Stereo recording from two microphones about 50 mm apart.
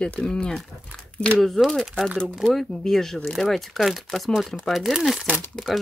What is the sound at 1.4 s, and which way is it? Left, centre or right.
Speech, centre.